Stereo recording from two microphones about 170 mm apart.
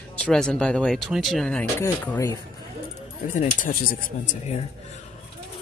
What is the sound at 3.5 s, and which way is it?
Speech, 55° left (ahead or behind).